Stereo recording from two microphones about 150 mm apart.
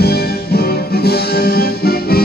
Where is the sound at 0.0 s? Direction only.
90° left.